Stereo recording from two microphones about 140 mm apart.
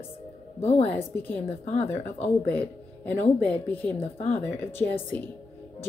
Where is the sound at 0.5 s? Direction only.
45° left (ahead or behind).